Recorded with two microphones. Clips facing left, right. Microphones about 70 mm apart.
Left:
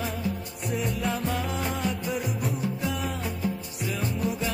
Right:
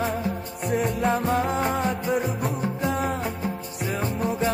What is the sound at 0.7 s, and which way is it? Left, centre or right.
Music, right.